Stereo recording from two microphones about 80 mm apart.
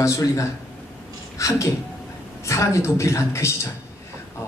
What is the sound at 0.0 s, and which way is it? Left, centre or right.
Speech, left.